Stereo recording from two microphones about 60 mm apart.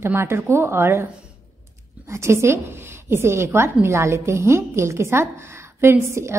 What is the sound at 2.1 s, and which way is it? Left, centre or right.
A woman's voice, right.